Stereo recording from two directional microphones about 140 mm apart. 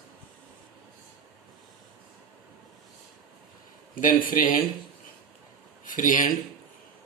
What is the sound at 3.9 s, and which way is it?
Speech, 80° left.